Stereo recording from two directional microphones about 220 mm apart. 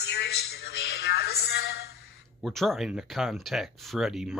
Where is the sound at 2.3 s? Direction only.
Centre (ahead or behind).